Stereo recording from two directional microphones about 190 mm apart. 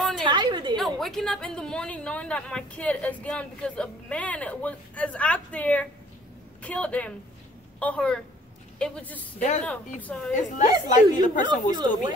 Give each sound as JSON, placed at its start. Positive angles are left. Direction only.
{"t": 0.2, "sound": "a sound", "side_deg": -25}
{"t": 0.7, "sound": "a woman's voice", "side_deg": 0}
{"t": 10.3, "sound": "a woman's voice", "side_deg": 40}
{"t": 11.4, "sound": "speech", "side_deg": -20}